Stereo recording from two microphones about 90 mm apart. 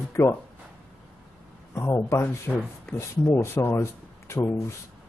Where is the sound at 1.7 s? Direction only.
35° left (ahead or behind).